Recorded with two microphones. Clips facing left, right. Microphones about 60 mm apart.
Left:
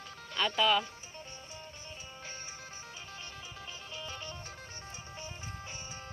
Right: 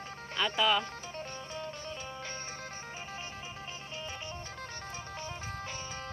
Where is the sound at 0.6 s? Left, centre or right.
Centre.